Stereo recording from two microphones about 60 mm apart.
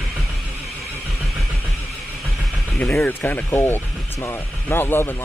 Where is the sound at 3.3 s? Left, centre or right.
Left.